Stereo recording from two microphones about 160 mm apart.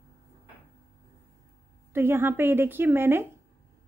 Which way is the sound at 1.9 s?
15° right (ahead or behind).